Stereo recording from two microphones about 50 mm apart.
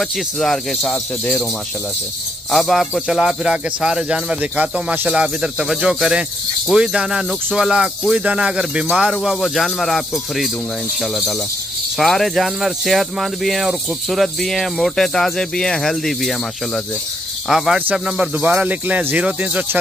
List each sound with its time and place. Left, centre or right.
0.0 s speech: centre
2.5 s speech: centre
3.2 s speech: centre
4.1 s speech: right
5.0 s speech: centre
9.1 s speech: centre
17.9 s speech: centre
18.3 s speech: right